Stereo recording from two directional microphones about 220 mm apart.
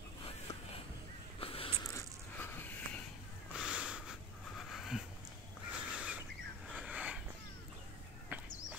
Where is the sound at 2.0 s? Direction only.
10° left (ahead or behind).